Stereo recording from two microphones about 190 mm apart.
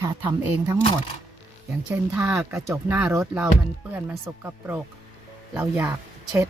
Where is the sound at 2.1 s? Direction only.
5° right (ahead or behind).